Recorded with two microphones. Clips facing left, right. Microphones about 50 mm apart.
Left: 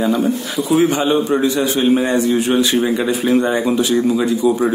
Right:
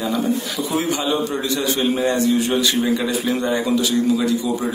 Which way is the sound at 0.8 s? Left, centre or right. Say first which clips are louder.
Left 6 dB; left.